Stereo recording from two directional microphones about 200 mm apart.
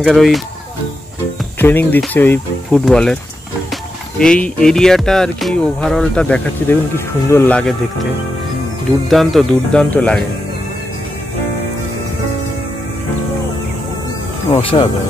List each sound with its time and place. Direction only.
0.0 s music: centre (ahead or behind)
1.6 s speech: 10° left (ahead or behind)
2.8 s music: 5° left (ahead or behind)
7.2 s speech: 10° left (ahead or behind)
9.1 s music: centre (ahead or behind)
14.5 s speech: 25° left (ahead or behind)